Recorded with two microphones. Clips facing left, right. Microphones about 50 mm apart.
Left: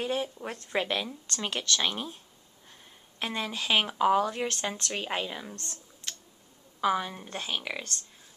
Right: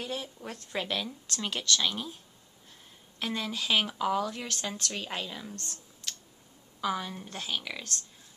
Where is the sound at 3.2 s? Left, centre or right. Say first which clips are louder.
Left 1 dB; centre.